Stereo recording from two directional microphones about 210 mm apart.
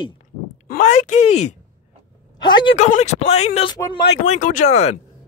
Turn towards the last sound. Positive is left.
turn(degrees=35)  # may be behind; listen again after turning